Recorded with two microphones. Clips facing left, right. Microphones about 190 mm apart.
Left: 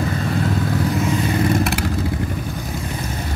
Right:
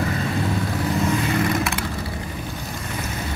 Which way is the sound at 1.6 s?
70° left (ahead or behind).